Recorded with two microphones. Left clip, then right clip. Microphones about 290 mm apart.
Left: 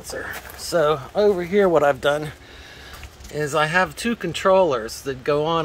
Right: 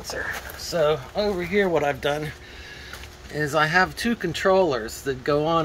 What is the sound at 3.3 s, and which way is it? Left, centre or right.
Speech, centre.